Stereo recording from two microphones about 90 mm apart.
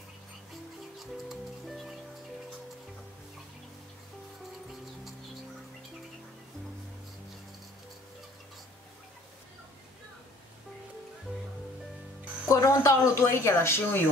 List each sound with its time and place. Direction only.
0.9 s music: centre (ahead or behind)
12.4 s speech: 35° left (ahead or behind)